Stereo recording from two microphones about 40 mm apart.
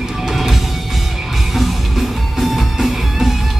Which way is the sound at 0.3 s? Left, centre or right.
Centre.